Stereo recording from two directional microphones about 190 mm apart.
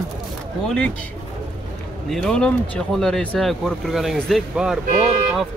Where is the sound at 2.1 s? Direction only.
5° left (ahead or behind).